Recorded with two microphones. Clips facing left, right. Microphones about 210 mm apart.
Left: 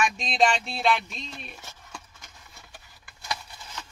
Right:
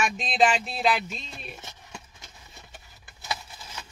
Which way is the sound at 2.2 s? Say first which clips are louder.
Right 2 dB; 20° right (ahead or behind).